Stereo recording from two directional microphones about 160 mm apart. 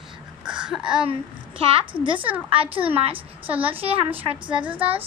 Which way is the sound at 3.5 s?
10° right (ahead or behind).